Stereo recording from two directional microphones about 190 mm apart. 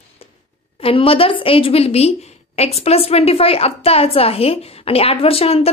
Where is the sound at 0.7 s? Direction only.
30° left (ahead or behind).